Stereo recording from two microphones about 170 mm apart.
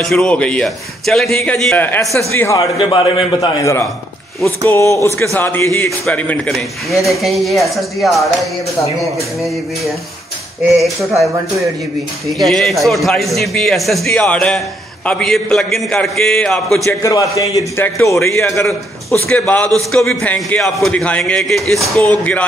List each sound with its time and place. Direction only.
0.0 s a man's voice: 5° left (ahead or behind)
2.8 s a man's voice: 30° left (ahead or behind)
4.9 s a man's voice: 15° left (ahead or behind); by 8.5 s centre (ahead or behind)
10.6 s a man's voice: centre (ahead or behind)
12.3 s a man's voice: centre (ahead or behind)
16.8 s a man's voice: 20° left (ahead or behind)